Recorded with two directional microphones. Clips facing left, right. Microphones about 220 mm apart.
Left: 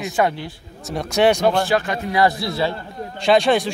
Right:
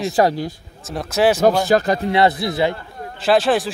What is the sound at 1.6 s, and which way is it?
A man's voice, 40° right (ahead or behind).